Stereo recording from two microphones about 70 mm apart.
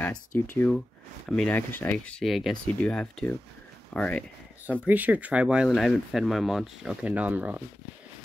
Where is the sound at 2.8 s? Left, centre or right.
Centre.